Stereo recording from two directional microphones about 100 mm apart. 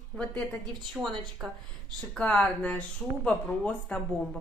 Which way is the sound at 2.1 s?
10° left (ahead or behind).